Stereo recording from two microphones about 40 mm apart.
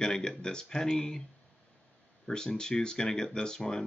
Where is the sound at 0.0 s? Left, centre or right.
Centre.